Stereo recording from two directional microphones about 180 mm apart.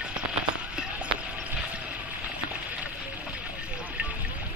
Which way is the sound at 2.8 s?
10° right (ahead or behind).